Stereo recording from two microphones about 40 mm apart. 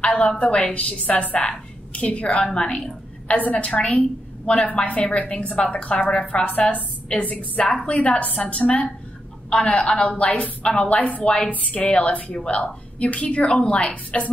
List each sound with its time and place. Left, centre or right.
0.0 s a sound: left
0.4 s a woman's voice: left
2.4 s a woman's voice: left
3.3 s a woman's voice: left
6.4 s a woman's voice: left